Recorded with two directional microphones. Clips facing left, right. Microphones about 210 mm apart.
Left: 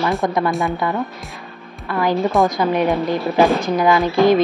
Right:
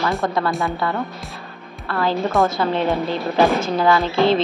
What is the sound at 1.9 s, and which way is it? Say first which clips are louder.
Speech: left 2 dB; 15° left (ahead or behind).